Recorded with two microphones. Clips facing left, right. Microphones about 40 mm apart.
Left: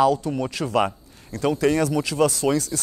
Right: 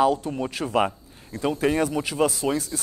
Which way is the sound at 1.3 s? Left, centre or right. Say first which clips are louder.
Left 2 dB; right.